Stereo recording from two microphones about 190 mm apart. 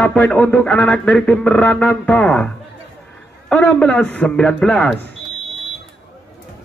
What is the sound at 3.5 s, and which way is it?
Speech, 5° left (ahead or behind).